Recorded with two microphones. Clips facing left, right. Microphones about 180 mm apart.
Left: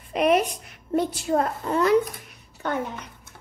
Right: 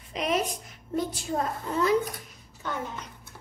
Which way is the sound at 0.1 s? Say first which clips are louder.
Left 7 dB; 60° left (ahead or behind).